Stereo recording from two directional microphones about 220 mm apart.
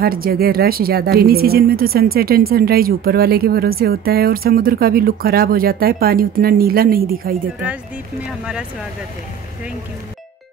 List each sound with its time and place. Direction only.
0.0 s speech: 40° right (ahead or behind)